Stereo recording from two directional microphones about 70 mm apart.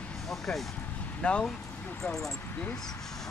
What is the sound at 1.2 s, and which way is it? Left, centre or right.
Speech, centre.